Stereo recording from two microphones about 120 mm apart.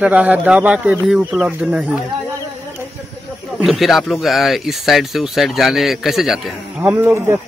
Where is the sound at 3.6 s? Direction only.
Centre (ahead or behind).